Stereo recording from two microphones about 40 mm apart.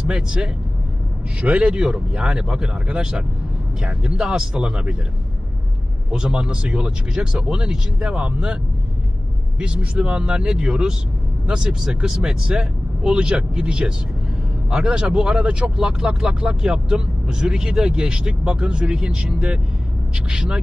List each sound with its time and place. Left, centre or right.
0.1 s speech: centre
6.1 s speech: right
9.6 s speech: right
20.2 s speech: right